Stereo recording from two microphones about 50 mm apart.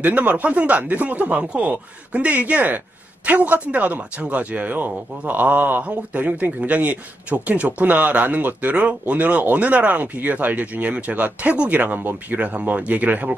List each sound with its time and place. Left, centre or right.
0.0 s speech: right
12.4 s speech: right